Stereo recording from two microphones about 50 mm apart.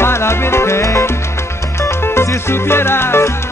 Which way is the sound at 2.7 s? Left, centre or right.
Left.